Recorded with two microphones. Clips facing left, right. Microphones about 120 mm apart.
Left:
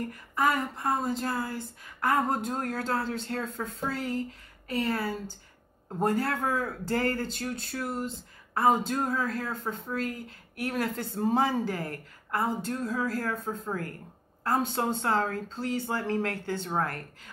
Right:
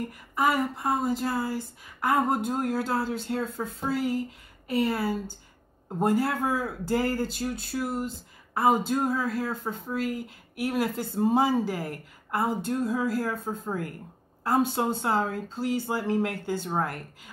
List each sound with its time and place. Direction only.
0.1 s speech: 10° right (ahead or behind)